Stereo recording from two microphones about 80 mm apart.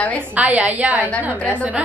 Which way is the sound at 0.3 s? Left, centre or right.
Centre.